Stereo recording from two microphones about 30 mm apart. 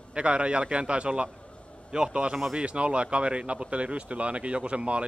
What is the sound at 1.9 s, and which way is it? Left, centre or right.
Speech, right.